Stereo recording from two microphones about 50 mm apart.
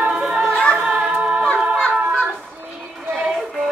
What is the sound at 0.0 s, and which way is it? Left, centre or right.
Music, right.